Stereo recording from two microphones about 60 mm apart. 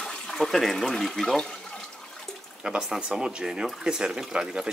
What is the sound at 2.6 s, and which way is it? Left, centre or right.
A man's voice, centre.